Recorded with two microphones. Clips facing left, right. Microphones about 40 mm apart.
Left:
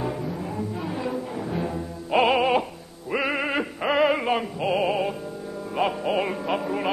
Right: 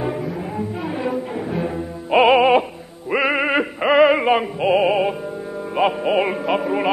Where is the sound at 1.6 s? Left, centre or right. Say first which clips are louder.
Right 5 dB; right.